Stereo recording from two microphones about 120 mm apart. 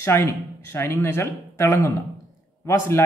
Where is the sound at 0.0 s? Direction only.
20° left (ahead or behind).